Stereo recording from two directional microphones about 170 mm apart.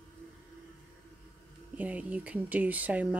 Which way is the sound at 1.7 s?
10° right (ahead or behind).